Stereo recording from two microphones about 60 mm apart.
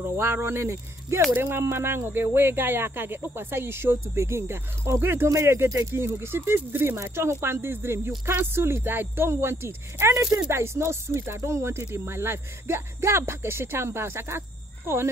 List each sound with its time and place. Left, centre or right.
0.0 s speech: right